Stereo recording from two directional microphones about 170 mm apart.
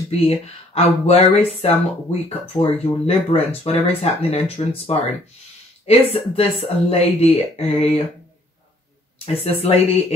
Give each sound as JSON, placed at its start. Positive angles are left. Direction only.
{"t": 0.1, "sound": "speech", "side_deg": 35}
{"t": 9.2, "sound": "speech", "side_deg": 35}